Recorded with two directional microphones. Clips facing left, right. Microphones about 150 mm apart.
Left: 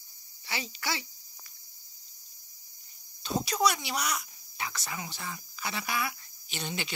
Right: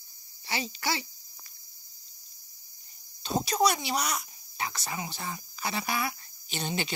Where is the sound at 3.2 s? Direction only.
35° right (ahead or behind).